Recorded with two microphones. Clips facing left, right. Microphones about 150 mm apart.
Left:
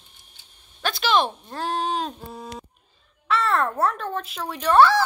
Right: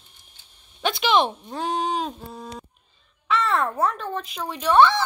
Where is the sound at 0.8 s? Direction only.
20° right (ahead or behind).